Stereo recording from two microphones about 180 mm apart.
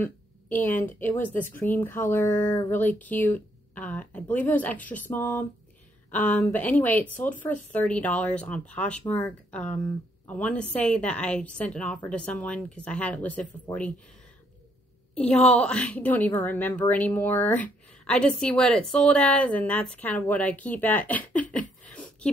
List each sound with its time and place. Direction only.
0.0 s a woman's voice: 10° left (ahead or behind)
15.1 s a woman's voice: 5° left (ahead or behind)
21.5 s a sound: 5° left (ahead or behind)